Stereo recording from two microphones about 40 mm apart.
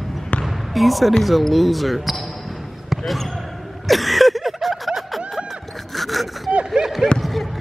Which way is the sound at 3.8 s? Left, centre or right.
Centre.